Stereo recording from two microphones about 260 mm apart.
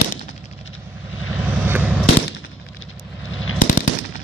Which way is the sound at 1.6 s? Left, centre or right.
Centre.